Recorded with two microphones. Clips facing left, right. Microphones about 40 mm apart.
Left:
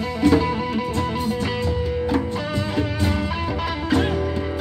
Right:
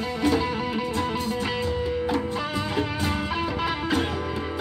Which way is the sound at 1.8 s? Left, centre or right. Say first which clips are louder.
Left 3 dB; centre.